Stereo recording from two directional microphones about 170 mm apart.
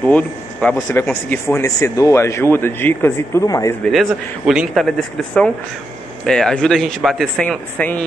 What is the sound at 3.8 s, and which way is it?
A man's voice, centre (ahead or behind).